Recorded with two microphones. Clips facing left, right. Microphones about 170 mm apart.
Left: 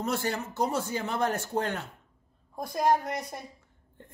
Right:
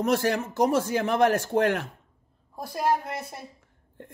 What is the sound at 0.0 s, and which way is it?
Speech, 90° right.